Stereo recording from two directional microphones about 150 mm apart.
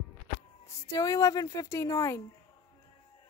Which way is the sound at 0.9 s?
20° left (ahead or behind).